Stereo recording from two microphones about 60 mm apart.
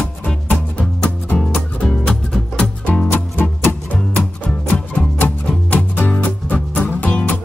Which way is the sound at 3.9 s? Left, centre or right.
Centre.